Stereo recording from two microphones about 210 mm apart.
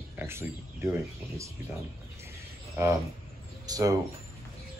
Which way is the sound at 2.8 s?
10° right (ahead or behind).